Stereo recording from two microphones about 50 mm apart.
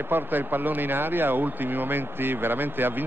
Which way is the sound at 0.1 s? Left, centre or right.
Right.